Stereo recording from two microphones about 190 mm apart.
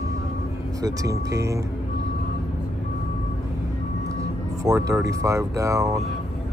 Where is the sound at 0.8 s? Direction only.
20° right (ahead or behind).